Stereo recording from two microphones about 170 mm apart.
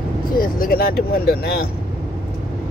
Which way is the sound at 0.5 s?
60° left (ahead or behind).